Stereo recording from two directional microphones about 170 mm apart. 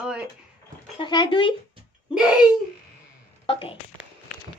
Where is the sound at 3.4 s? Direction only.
30° left (ahead or behind).